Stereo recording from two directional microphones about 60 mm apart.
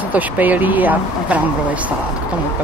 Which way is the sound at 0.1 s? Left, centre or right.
Right.